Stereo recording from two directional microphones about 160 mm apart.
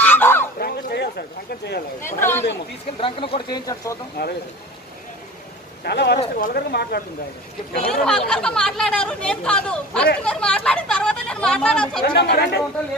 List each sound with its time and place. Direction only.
0.0 s a sound: 10° left (ahead or behind)
0.6 s a sound: 75° left (ahead or behind)
2.0 s speech: 15° left (ahead or behind)
3.0 s speech: 35° left (ahead or behind)
5.9 s speech: 90° left
7.9 s a woman's voice: 5° left (ahead or behind)
12.0 s speech: 80° left